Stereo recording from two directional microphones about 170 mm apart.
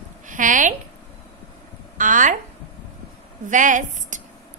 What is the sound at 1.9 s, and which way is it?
Speech, 50° right (ahead or behind).